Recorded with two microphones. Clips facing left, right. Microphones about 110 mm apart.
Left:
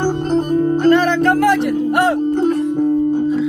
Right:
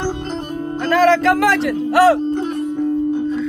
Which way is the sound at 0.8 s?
90° right.